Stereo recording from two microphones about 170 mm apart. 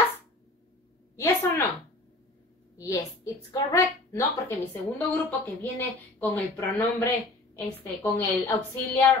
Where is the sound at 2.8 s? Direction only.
20° left (ahead or behind).